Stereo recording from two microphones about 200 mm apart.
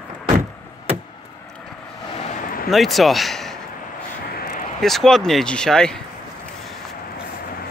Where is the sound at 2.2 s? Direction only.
45° left (ahead or behind).